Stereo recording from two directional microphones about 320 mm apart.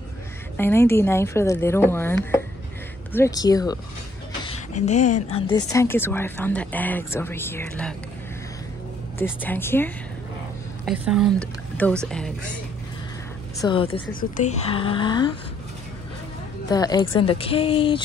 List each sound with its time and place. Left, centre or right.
0.6 s speech: centre
4.5 s a sound: left
5.3 s speech: centre
9.2 s speech: centre
10.9 s a woman's voice: centre
13.6 s speech: centre
16.6 s speech: centre